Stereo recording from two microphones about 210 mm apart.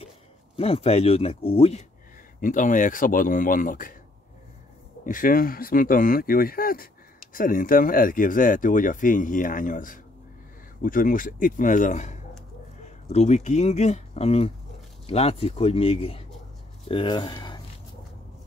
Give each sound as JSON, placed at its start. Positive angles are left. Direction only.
{"t": 0.6, "sound": "speech", "side_deg": 30}
{"t": 5.0, "sound": "speech", "side_deg": 40}